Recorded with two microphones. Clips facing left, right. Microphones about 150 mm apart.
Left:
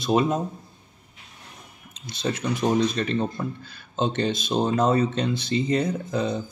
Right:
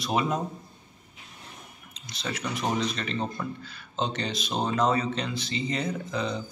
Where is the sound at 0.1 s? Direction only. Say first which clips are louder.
Left 6 dB; 40° left (ahead or behind).